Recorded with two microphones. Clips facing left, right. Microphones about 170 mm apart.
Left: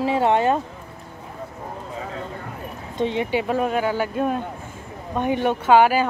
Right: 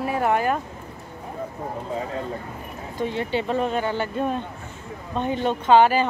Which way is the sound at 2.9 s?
20° left (ahead or behind).